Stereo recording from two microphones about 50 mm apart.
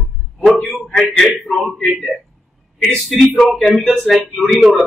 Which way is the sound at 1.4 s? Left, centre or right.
Centre.